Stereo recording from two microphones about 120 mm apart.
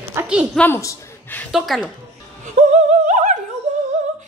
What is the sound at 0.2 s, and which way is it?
Speech, 20° right (ahead or behind).